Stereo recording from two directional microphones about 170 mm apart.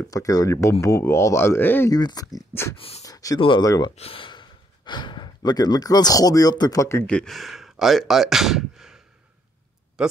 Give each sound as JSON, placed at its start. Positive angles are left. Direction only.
{"t": 0.1, "sound": "speech", "side_deg": 20}
{"t": 2.0, "sound": "speech", "side_deg": 25}
{"t": 3.0, "sound": "a sound", "side_deg": 20}
{"t": 3.3, "sound": "speech", "side_deg": 30}
{"t": 3.9, "sound": "speech", "side_deg": 35}